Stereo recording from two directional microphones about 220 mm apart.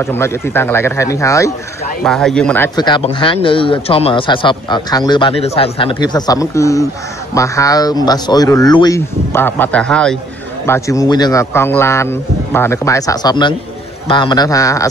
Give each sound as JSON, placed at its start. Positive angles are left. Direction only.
{"t": 0.0, "sound": "a man's voice", "side_deg": 10}
{"t": 2.0, "sound": "a man's voice", "side_deg": 0}
{"t": 10.7, "sound": "a man's voice", "side_deg": 15}